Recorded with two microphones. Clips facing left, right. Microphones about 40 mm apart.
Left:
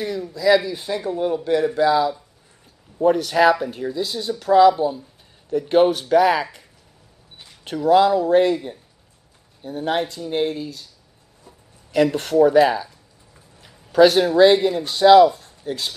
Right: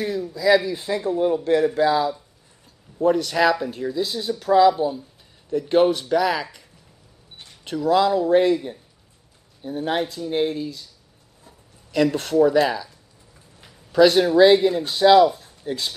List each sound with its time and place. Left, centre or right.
0.3 s speech: centre
1.1 s speech: centre
1.8 s speech: centre
3.0 s speech: centre
5.5 s speech: centre
7.8 s speech: centre
9.6 s speech: centre
11.9 s speech: centre
12.5 s speech: centre
14.0 s speech: centre